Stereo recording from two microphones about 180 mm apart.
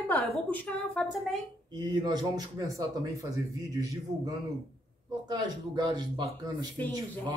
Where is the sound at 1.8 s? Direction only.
25° right (ahead or behind).